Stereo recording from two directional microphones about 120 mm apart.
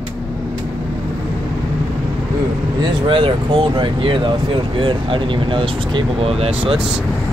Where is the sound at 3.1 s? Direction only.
45° right (ahead or behind).